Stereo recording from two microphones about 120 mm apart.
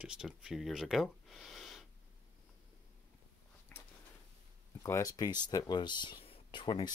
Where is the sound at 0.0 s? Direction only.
5° right (ahead or behind).